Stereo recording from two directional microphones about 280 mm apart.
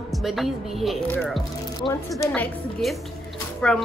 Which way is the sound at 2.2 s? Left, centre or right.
Centre.